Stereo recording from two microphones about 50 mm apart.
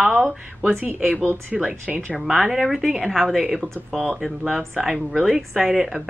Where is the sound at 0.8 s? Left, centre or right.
Right.